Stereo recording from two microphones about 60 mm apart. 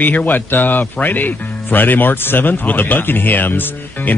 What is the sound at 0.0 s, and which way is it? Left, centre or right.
Speech, left.